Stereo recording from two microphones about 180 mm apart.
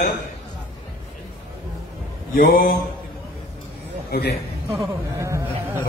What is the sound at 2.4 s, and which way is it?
Speech, 55° left (ahead or behind).